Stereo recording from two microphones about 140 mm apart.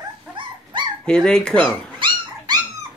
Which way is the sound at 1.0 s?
5° left (ahead or behind).